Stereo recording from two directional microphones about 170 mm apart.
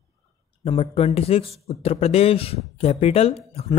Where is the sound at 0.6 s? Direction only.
35° left (ahead or behind).